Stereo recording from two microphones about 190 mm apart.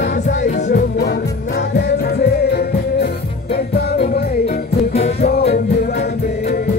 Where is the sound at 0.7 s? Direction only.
55° left (ahead or behind).